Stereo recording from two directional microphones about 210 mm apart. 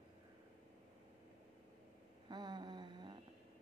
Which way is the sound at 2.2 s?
20° right (ahead or behind).